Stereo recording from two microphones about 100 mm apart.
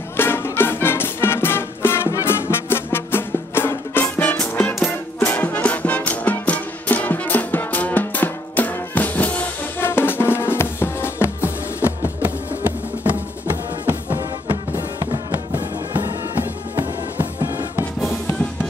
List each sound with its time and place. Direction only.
0.2 s music: 20° left (ahead or behind)
11.4 s music: 20° right (ahead or behind)
15.5 s music: 45° right (ahead or behind)